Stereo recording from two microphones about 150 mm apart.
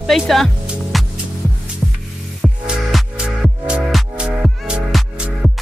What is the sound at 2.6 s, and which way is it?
Music, 5° right (ahead or behind).